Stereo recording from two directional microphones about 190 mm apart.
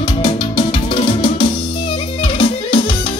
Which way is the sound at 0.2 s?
25° left (ahead or behind).